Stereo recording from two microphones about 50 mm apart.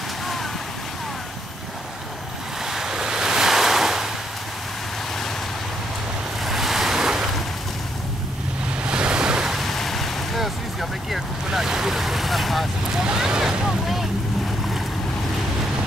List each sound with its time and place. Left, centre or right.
2.6 s waves: centre
6.4 s waves: centre
8.8 s waves: centre
9.6 s vehicle: centre
13.0 s waves: centre